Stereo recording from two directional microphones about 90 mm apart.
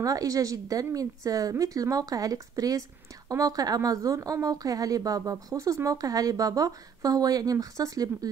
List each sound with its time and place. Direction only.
0.0 s a woman's voice: 40° right (ahead or behind)